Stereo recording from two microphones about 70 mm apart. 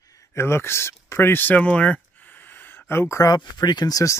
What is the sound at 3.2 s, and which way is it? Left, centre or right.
Speech, left.